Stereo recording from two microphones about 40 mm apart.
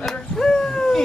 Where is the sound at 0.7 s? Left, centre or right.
Centre.